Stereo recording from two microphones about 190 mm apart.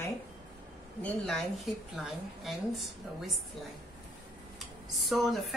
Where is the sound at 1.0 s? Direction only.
5° left (ahead or behind).